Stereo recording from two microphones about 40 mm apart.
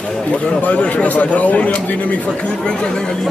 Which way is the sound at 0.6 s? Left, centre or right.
Left.